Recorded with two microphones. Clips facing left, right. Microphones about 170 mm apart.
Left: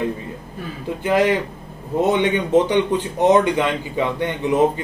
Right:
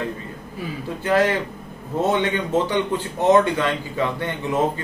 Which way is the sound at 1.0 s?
15° left (ahead or behind).